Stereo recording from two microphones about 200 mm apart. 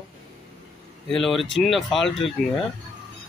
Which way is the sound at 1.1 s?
Centre (ahead or behind).